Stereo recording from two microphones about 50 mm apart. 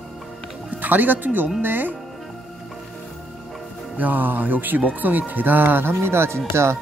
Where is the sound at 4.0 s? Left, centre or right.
Right.